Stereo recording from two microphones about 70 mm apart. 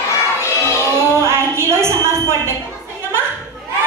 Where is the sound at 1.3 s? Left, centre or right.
Right.